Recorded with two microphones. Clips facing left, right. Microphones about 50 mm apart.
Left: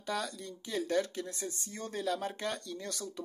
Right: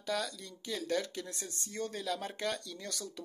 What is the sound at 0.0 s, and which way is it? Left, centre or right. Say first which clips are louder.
Speech: even; centre.